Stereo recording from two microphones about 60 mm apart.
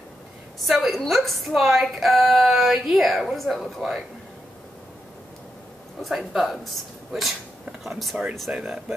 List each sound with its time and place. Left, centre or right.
0.7 s a woman's voice: centre
6.0 s a woman's voice: centre
8.5 s speech: right